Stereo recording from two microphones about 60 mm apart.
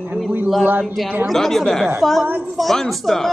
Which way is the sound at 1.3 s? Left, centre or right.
Centre.